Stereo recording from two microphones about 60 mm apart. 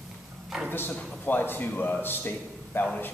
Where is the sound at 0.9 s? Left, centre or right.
Left.